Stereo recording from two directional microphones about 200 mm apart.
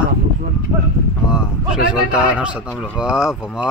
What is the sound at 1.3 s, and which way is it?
Speech, 5° right (ahead or behind).